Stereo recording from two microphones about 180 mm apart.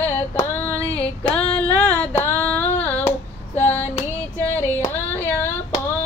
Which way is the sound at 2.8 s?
10° left (ahead or behind).